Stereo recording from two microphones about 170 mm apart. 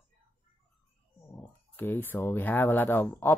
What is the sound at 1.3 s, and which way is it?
Speech, 15° left (ahead or behind).